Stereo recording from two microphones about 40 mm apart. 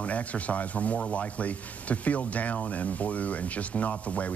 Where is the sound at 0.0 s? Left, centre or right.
Left.